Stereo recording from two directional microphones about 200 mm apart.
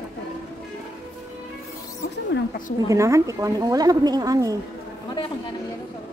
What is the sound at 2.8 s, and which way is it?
A woman's voice, 15° right (ahead or behind).